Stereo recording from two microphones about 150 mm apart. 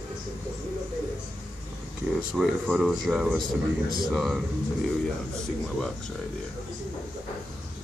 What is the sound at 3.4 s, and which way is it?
Speech, 70° right (ahead or behind).